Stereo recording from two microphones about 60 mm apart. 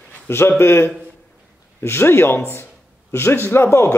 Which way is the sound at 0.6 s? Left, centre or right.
Left.